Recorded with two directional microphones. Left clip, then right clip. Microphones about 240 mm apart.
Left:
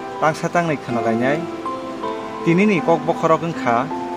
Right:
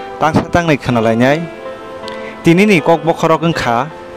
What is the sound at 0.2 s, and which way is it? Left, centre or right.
Speech, right.